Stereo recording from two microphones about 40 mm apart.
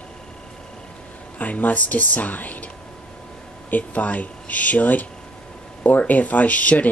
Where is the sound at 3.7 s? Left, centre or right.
Left.